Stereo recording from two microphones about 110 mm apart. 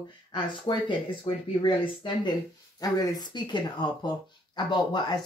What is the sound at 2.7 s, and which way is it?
Speech, 35° left (ahead or behind).